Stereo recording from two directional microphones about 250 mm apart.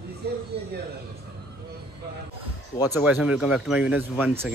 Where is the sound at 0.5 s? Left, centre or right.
Right.